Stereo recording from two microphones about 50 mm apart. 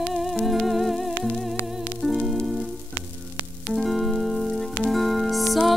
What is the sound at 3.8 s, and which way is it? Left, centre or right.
Music, centre.